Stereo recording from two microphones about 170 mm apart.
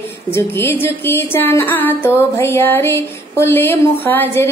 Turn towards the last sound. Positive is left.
turn(degrees=10)  # may be behind; listen again after turning